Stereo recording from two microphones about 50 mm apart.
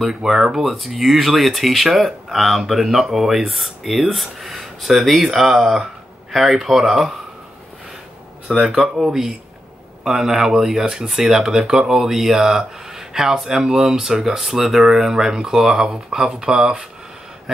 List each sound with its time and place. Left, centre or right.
0.0 s speech: centre
8.5 s speech: centre
8.8 s speech: centre